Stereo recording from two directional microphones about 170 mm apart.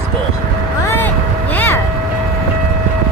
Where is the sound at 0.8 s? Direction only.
10° left (ahead or behind).